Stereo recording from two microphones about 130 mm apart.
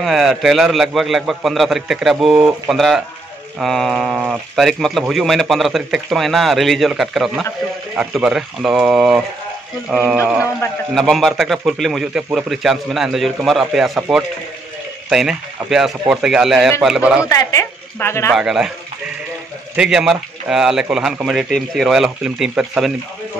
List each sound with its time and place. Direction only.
0.0 s a man's voice: centre (ahead or behind)
17.3 s speech: 25° left (ahead or behind)
18.3 s speech: 5° right (ahead or behind)
19.7 s speech: 5° right (ahead or behind)